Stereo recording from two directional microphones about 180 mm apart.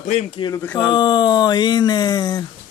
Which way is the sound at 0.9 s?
25° left (ahead or behind).